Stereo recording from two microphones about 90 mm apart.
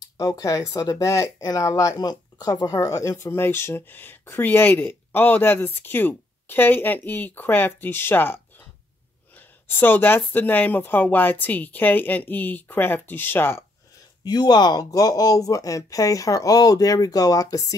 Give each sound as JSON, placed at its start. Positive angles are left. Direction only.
{"t": 0.2, "sound": "speech", "side_deg": 40}
{"t": 9.7, "sound": "speech", "side_deg": 20}
{"t": 14.2, "sound": "speech", "side_deg": 50}